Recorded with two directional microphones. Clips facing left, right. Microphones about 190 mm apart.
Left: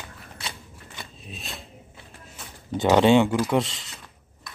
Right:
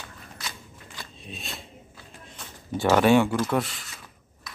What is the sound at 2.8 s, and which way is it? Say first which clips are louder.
Speech: left 2 dB; 20° left (ahead or behind).